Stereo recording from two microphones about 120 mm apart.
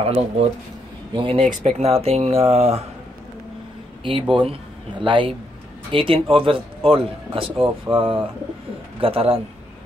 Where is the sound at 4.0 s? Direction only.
45° right (ahead or behind).